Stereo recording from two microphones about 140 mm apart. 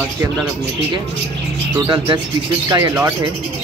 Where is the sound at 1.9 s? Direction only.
35° right (ahead or behind).